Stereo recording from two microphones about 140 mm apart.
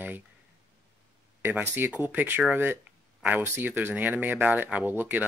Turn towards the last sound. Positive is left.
turn(degrees=-10)  # may be behind; listen again after turning